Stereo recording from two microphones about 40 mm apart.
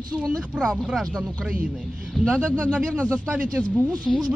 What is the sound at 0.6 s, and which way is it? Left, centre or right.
Speech, right.